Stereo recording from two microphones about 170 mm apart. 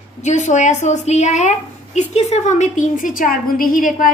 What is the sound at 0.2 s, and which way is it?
A woman's voice, 45° left (ahead or behind).